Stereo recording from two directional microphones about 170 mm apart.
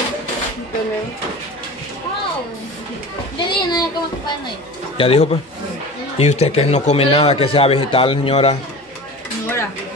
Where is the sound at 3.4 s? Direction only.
25° left (ahead or behind).